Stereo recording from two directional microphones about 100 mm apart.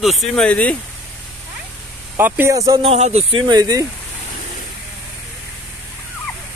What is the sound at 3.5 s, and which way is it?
Speech, 40° right (ahead or behind).